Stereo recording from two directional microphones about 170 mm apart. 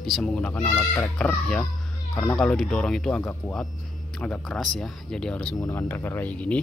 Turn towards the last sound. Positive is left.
turn(degrees=10)  # may be behind; listen again after turning